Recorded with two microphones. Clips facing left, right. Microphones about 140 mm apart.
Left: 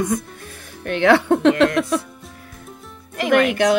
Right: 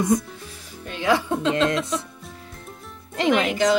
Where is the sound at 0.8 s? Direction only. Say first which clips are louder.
Left 7 dB; 65° left (ahead or behind).